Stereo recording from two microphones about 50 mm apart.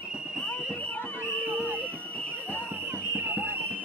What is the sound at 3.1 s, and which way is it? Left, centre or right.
Run, right.